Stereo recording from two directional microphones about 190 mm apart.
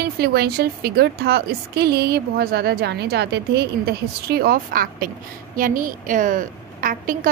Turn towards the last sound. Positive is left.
turn(degrees=-45)  # may be behind; listen again after turning